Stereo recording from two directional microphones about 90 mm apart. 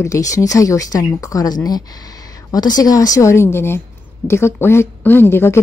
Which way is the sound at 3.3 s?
30° left (ahead or behind).